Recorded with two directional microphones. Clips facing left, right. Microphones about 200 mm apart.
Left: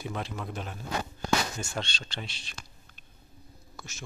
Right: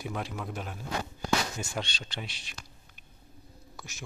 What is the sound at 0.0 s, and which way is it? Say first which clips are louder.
Speech: even; 10° right (ahead or behind).